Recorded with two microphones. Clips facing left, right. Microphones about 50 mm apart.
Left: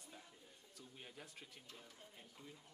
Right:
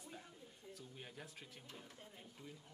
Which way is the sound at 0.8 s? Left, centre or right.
Centre.